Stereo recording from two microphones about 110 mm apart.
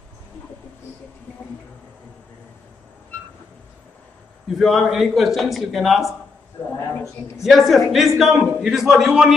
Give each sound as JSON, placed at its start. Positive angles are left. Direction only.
{"t": 4.6, "sound": "a man's voice", "side_deg": 0}
{"t": 6.6, "sound": "speech", "side_deg": 20}
{"t": 7.4, "sound": "a man's voice", "side_deg": 0}